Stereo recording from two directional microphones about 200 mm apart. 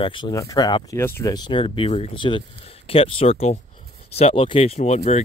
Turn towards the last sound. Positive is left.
turn(degrees=30)  # may be behind; listen again after turning